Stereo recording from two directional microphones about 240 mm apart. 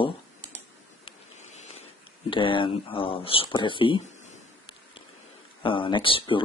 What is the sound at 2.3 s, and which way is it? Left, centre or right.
Speech, left.